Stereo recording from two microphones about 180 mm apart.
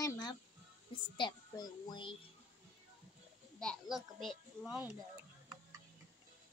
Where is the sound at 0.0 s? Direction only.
20° left (ahead or behind).